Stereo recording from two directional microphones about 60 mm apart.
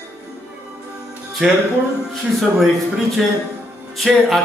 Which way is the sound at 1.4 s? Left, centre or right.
Centre.